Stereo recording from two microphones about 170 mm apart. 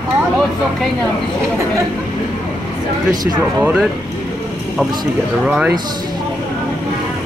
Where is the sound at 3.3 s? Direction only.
5° right (ahead or behind).